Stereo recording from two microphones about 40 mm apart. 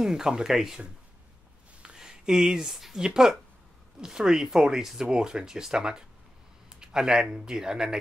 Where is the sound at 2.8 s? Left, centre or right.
Centre.